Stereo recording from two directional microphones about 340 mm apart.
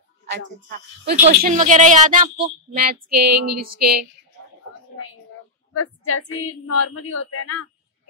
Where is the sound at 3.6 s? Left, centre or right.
Right.